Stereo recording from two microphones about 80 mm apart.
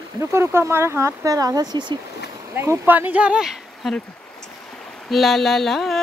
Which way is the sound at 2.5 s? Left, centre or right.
Right.